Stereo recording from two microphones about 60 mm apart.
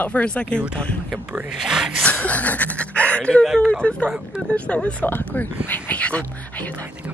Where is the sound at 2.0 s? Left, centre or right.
Left.